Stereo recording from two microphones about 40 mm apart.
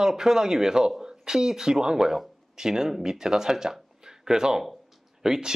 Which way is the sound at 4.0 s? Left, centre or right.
Centre.